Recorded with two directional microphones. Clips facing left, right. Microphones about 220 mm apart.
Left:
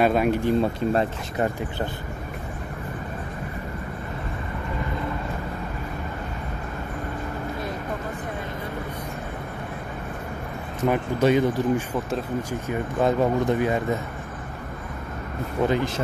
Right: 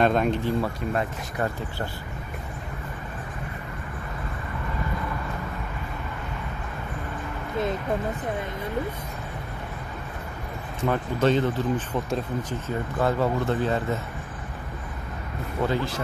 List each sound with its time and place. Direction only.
0.0 s speech: 10° left (ahead or behind)
10.9 s speech: 10° left (ahead or behind)
15.6 s speech: 20° left (ahead or behind)